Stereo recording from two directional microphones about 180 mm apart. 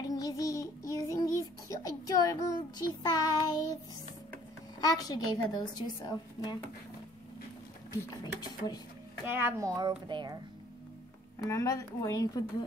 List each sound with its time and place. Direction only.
0.0 s music: 20° left (ahead or behind)
3.0 s child singing: 20° left (ahead or behind)
4.7 s a woman's voice: 20° left (ahead or behind)
8.2 s a woman's voice: 25° left (ahead or behind)
9.2 s a woman's voice: 10° right (ahead or behind)
11.4 s a woman's voice: 20° left (ahead or behind)